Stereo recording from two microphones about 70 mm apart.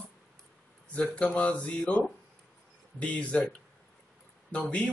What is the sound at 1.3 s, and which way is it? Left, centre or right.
Speech, centre.